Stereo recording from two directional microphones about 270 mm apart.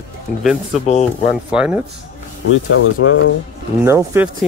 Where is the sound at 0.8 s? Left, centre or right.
Left.